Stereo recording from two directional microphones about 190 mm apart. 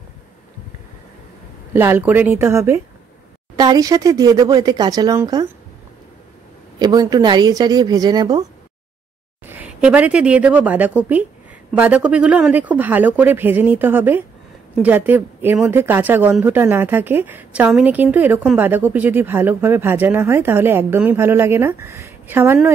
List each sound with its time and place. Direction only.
1.7 s speech: 10° right (ahead or behind)
6.8 s speech: 20° right (ahead or behind)
9.5 s speech: 5° right (ahead or behind)